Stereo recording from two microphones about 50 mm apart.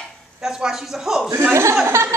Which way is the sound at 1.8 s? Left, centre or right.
Right.